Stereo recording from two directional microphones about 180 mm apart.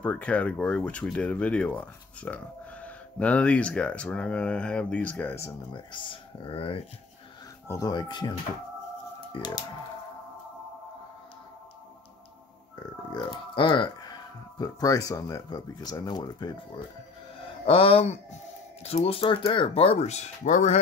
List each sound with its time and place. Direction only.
0.0 s speech: 5° left (ahead or behind)
5.9 s speech: 25° left (ahead or behind)
7.6 s speech: 20° left (ahead or behind)
12.7 s a sound: 25° left (ahead or behind)
14.6 s speech: 20° left (ahead or behind)
17.6 s speech: 30° left (ahead or behind)